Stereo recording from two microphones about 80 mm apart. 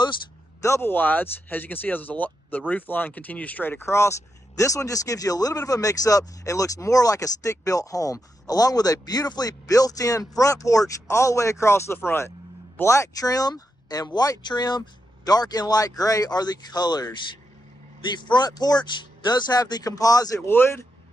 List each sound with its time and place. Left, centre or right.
0.6 s speech: left
14.8 s speech: left
18.1 s speech: left
20.4 s speech: left